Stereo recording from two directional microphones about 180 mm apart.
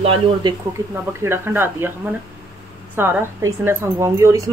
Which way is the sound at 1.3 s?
10° right (ahead or behind).